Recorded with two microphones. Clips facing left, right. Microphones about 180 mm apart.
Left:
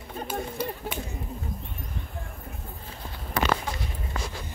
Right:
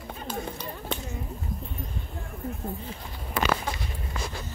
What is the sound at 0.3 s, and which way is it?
Run, 10° left (ahead or behind).